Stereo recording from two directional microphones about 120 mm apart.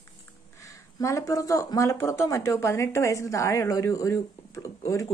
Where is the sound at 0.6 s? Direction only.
25° left (ahead or behind).